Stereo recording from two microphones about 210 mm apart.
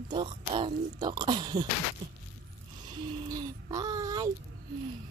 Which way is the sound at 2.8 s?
20° right (ahead or behind).